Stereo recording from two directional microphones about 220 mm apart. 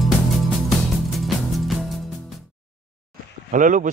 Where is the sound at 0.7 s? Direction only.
Centre (ahead or behind).